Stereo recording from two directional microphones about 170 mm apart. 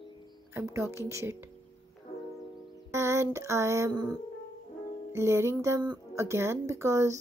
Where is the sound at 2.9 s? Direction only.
15° right (ahead or behind).